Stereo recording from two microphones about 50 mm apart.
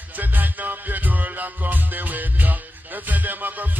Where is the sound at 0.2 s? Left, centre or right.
Right.